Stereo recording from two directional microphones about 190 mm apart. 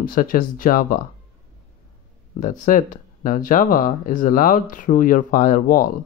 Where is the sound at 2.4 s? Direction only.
45° left (ahead or behind).